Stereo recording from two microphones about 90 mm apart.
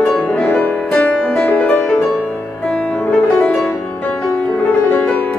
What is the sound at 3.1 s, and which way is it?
Music, 10° left (ahead or behind).